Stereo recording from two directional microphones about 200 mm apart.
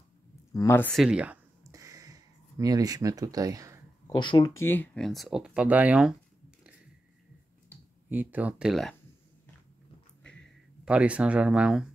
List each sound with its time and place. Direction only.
0.5 s speech: 15° left (ahead or behind)
1.0 s a sound: 5° right (ahead or behind)
4.1 s speech: 20° left (ahead or behind); by 6.1 s 5° right (ahead or behind)
8.1 s speech: 10° right (ahead or behind)
10.2 s a sound: 5° left (ahead or behind)
10.9 s speech: 5° right (ahead or behind)